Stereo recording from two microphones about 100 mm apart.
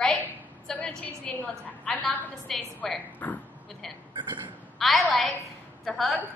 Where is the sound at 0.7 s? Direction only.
15° left (ahead or behind).